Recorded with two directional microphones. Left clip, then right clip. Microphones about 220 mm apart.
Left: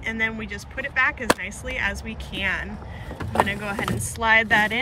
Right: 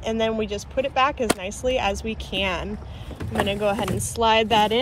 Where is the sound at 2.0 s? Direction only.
10° right (ahead or behind).